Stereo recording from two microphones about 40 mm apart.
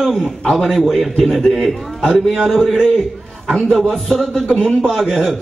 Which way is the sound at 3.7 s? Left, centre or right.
Centre.